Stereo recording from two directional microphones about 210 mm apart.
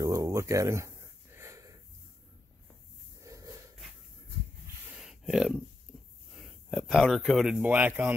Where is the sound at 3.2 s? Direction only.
15° right (ahead or behind).